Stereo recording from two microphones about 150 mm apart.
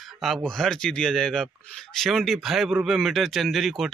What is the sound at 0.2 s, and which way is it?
A man's voice, centre (ahead or behind).